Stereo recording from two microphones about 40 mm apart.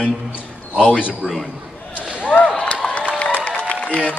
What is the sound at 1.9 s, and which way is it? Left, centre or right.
Basketball bounce, right.